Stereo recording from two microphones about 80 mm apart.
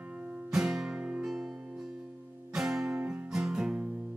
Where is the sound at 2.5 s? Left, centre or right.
Centre.